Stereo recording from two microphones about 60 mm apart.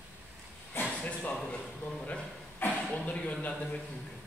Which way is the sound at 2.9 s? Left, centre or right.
Left.